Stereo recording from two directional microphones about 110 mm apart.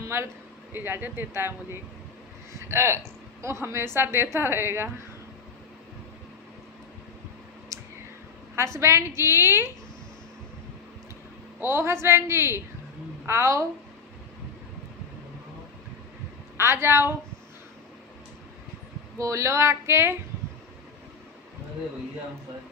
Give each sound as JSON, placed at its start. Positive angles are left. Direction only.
{"t": 0.1, "sound": "a woman's voice", "side_deg": -25}
{"t": 7.7, "sound": "a sound", "side_deg": -30}
{"t": 8.5, "sound": "a woman's voice", "side_deg": -25}
{"t": 11.6, "sound": "a woman's voice", "side_deg": -25}
{"t": 16.5, "sound": "a woman's voice", "side_deg": -20}
{"t": 19.1, "sound": "a woman's voice", "side_deg": -30}